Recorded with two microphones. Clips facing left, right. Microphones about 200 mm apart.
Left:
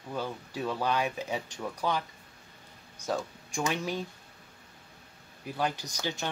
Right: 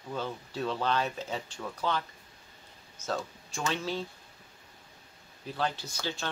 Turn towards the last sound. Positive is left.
turn(degrees=15)  # may be behind; listen again after turning